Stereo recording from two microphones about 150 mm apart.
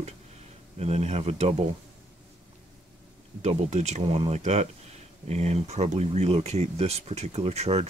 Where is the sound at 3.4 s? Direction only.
50° right (ahead or behind).